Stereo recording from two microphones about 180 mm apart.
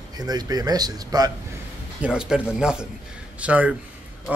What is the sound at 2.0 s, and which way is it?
Speech, 5° right (ahead or behind).